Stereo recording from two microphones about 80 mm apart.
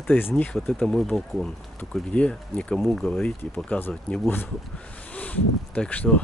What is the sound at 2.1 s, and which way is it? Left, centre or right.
Speech, centre.